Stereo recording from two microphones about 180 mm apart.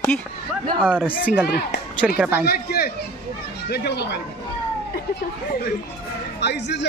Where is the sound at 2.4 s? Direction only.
60° left (ahead or behind).